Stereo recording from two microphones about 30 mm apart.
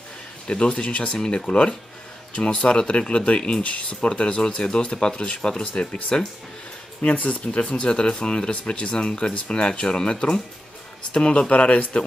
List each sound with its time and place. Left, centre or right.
0.5 s speech: left
3.3 s speech: left
3.6 s speech: left
4.1 s speech: left
4.6 s speech: left
7.0 s speech: left
7.9 s speech: left
11.5 s speech: left